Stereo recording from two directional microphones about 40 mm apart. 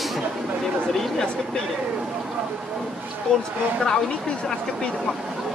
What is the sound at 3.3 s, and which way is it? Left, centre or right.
Speech, left.